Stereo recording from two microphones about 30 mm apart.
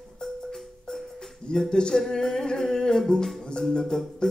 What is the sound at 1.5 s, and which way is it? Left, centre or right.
Speech, left.